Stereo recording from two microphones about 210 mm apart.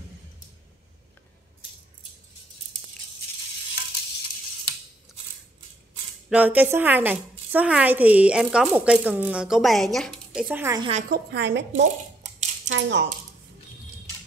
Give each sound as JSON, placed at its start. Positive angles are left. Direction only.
{"t": 6.3, "sound": "a woman's voice", "side_deg": -10}
{"t": 10.8, "sound": "a woman's voice", "side_deg": -30}
{"t": 11.1, "sound": "a woman's voice", "side_deg": -55}
{"t": 11.7, "sound": "a sound", "side_deg": -35}
{"t": 12.6, "sound": "speech", "side_deg": -60}